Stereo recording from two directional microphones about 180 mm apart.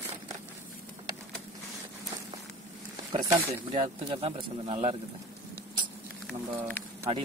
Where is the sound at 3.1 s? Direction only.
25° right (ahead or behind).